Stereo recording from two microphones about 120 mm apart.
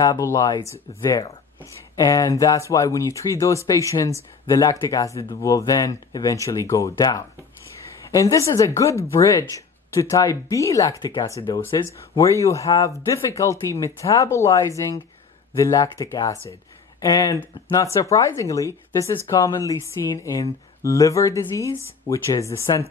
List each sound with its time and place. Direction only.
0.0 s speech: 25° left (ahead or behind)
17.7 s speech: 25° left (ahead or behind)